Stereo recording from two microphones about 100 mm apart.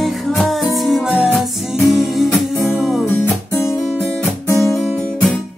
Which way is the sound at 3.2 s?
25° left (ahead or behind).